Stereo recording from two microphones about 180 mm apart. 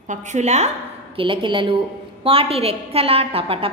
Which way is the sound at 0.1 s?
40° right (ahead or behind).